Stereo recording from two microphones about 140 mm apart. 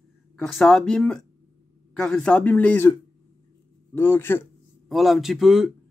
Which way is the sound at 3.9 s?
15° left (ahead or behind).